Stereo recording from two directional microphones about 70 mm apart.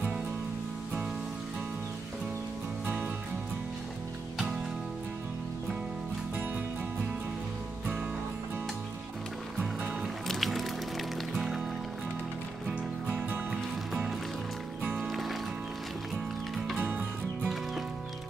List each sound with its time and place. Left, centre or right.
9.8 s music: centre
13.2 s music: centre
14.8 s music: right
15.0 s music: centre
16.7 s music: right